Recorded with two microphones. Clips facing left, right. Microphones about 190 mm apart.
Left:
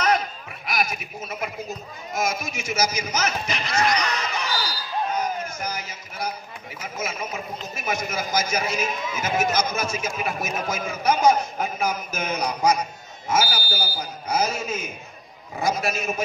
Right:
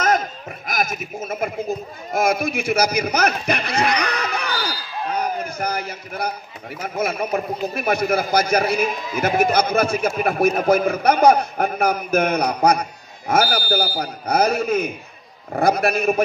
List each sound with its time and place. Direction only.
0.0 s a man's voice: 45° right (ahead or behind)
3.8 s a sound: 60° right (ahead or behind)
6.8 s a man's voice: 60° right (ahead or behind)